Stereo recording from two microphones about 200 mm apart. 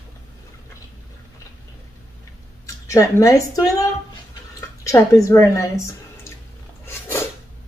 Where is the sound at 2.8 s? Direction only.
15° left (ahead or behind).